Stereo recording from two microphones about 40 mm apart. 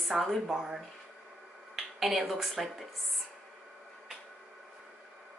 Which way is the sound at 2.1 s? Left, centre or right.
Centre.